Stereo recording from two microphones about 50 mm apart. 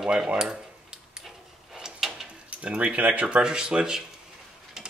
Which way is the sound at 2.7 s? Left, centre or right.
Right.